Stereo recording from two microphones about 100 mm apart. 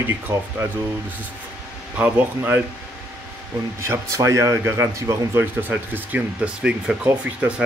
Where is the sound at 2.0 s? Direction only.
15° right (ahead or behind).